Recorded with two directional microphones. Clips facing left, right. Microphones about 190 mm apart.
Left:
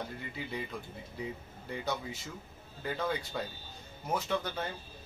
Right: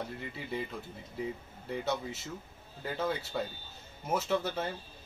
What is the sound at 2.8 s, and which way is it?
Speech, 5° right (ahead or behind).